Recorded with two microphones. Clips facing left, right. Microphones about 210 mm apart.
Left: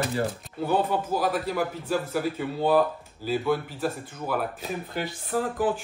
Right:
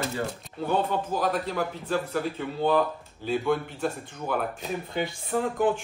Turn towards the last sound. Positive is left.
turn(degrees=5)  # may be behind; listen again after turning